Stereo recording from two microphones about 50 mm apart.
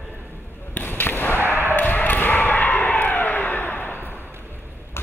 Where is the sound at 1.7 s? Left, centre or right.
Left.